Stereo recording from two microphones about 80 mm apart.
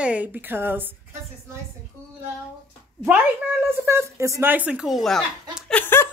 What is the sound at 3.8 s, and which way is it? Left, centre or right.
Speech, right.